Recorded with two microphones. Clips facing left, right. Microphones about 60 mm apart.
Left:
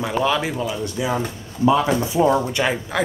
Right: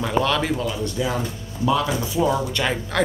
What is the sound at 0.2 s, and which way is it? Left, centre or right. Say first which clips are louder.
Speech: left 1 dB; centre.